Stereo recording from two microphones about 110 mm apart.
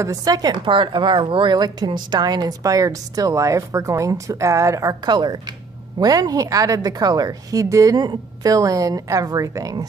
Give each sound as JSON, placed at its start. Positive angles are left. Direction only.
{"t": 0.0, "sound": "a woman's voice", "side_deg": -35}